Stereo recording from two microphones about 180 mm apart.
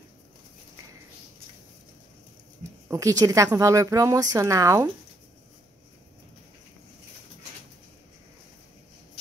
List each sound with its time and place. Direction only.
2.9 s speech: 20° right (ahead or behind)